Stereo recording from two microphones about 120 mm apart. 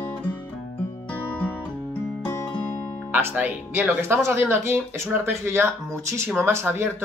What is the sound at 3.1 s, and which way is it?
Speech, 15° right (ahead or behind).